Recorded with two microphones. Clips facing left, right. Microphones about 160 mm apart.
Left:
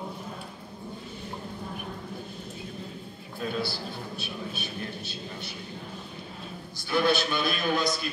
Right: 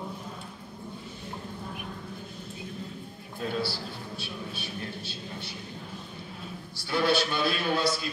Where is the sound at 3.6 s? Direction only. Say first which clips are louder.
Even; 30° right (ahead or behind).